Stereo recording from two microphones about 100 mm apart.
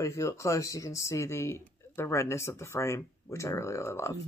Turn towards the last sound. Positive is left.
turn(degrees=30)  # may be behind; listen again after turning